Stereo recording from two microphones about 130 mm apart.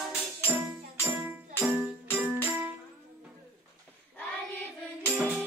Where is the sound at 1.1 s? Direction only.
15° right (ahead or behind).